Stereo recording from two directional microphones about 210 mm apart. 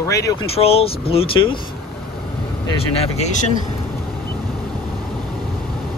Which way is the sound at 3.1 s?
35° left (ahead or behind).